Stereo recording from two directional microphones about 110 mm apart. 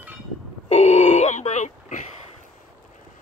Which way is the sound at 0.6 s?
80° left.